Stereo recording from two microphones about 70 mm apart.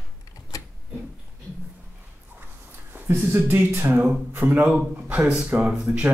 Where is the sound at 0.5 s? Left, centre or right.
Left.